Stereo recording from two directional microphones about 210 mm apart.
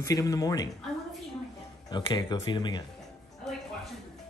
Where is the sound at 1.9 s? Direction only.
20° left (ahead or behind).